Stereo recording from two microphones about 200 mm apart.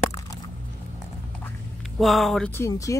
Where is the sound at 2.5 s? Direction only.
15° left (ahead or behind).